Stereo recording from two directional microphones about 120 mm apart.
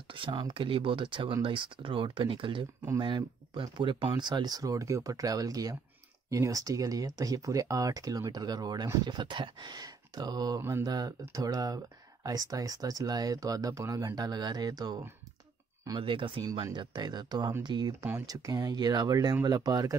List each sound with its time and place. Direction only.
0.1 s speech: 45° right (ahead or behind)
10.6 s mantra: 20° right (ahead or behind)
10.9 s speech: 30° right (ahead or behind)
16.0 s speech: 45° right (ahead or behind)